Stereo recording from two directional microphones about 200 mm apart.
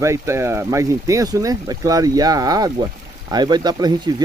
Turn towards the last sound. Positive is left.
turn(degrees=-20)  # may be behind; listen again after turning